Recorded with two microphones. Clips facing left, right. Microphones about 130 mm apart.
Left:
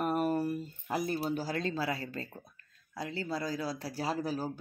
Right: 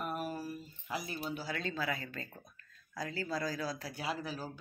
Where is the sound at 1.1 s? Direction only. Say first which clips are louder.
Left 6 dB; 35° left (ahead or behind).